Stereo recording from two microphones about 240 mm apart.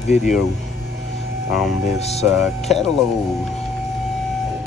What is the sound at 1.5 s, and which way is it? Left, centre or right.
Speech, centre.